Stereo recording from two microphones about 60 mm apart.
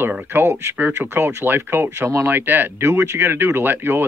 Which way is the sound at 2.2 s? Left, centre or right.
Right.